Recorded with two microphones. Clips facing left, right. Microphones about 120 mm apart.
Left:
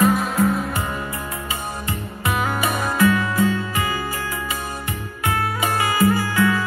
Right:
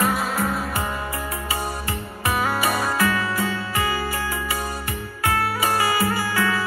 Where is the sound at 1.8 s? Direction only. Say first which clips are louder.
Left 1 dB; 20° left (ahead or behind).